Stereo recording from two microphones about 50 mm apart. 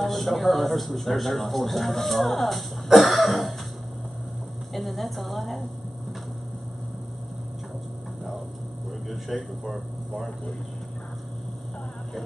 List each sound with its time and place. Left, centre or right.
0.0 s a man's voice: centre
4.7 s a man's voice: centre
9.1 s a man's voice: centre